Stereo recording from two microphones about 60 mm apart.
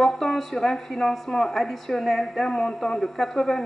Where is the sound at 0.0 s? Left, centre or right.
Centre.